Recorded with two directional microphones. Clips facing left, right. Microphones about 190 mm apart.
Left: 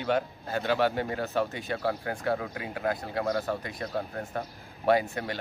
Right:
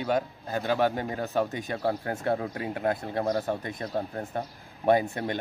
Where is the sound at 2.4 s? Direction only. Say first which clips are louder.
Right 3 dB; 30° right (ahead or behind).